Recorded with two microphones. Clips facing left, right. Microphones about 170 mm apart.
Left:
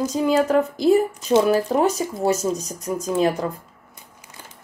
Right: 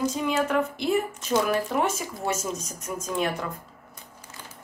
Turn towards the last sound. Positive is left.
turn(degrees=35)  # may be behind; listen again after turning